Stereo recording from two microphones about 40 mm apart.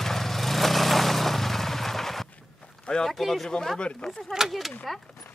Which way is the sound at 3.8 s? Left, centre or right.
Left.